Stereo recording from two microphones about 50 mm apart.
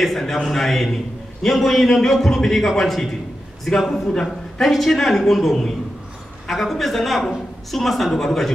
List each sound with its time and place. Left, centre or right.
0.0 s a man's voice: centre